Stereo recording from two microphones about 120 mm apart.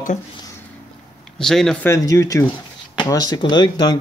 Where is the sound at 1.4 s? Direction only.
5° left (ahead or behind).